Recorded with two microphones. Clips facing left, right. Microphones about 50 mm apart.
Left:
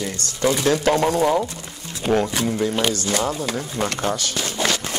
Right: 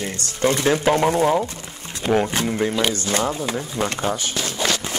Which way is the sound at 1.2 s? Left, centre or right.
Centre.